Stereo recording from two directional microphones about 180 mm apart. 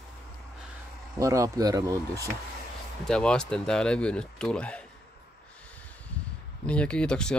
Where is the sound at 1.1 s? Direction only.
15° right (ahead or behind).